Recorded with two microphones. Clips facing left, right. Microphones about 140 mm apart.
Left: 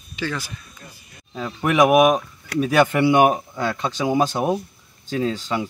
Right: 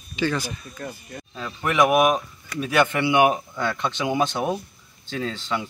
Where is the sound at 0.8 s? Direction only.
70° right (ahead or behind).